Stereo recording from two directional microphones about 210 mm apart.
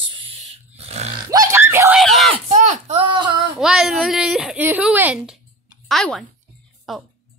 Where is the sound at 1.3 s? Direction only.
15° right (ahead or behind).